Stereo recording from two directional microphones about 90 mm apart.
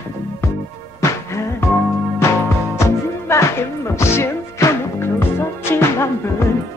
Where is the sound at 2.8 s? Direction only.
30° left (ahead or behind).